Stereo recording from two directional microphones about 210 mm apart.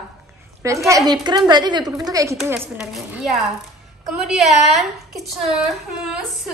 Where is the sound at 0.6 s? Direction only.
15° right (ahead or behind).